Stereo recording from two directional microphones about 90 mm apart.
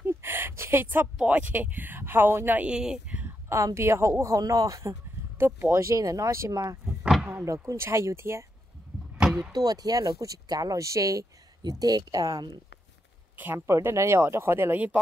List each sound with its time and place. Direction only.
0.0 s a sound: 25° right (ahead or behind)
1.1 s speech: 15° right (ahead or behind)
3.4 s speech: 30° right (ahead or behind)
5.4 s speech: 25° right (ahead or behind)
9.2 s a sound: 5° right (ahead or behind)
9.5 s speech: 45° right (ahead or behind)
13.4 s speech: 20° right (ahead or behind)
13.7 s speech: 30° right (ahead or behind)